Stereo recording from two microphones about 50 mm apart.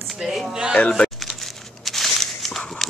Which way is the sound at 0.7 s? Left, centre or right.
Left.